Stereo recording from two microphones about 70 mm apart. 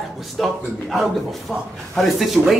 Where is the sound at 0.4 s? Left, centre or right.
Centre.